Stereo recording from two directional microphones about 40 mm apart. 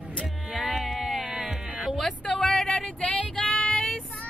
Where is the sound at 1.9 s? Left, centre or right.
Centre.